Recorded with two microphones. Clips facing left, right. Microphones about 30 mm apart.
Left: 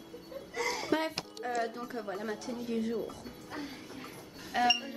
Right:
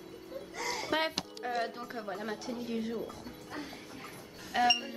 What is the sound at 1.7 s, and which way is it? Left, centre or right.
A woman's voice, centre.